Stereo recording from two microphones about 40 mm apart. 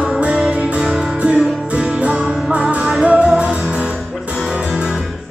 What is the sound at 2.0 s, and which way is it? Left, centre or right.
Music, right.